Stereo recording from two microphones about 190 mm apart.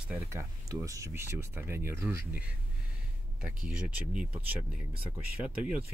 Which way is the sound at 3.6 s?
5° right (ahead or behind).